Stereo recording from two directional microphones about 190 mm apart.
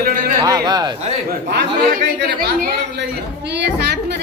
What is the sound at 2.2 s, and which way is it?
Speech, 60° right (ahead or behind).